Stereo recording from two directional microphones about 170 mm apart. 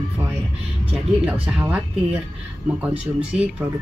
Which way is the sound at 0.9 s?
5° right (ahead or behind).